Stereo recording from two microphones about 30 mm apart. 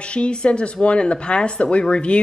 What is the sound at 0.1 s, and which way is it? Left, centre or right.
A woman's voice, left.